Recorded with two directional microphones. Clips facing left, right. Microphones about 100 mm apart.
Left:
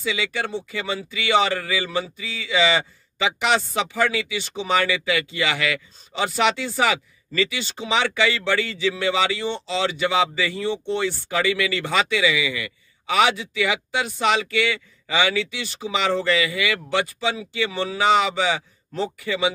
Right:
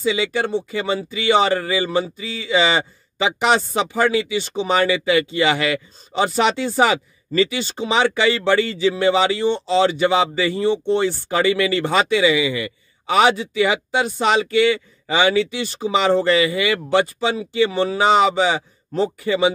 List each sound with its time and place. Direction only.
0.0 s speech: 30° right (ahead or behind)